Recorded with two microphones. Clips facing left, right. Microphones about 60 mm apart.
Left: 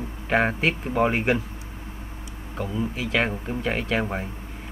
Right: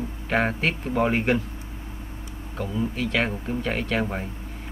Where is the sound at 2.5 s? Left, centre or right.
Centre.